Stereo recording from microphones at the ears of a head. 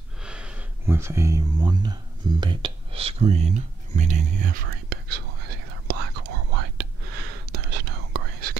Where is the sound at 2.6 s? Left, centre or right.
Right.